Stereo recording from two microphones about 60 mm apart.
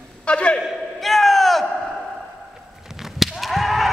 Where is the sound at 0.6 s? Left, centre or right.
Centre.